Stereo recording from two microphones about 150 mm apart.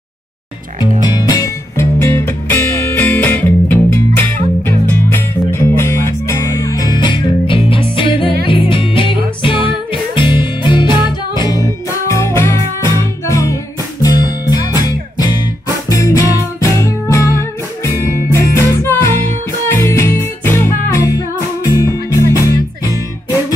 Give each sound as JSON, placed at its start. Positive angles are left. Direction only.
{"t": 1.0, "sound": "music", "side_deg": 25}
{"t": 21.7, "sound": "music", "side_deg": 20}